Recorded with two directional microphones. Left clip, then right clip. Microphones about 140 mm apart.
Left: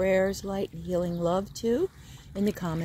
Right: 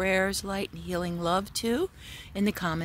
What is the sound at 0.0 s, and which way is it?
Speech, 30° right (ahead or behind).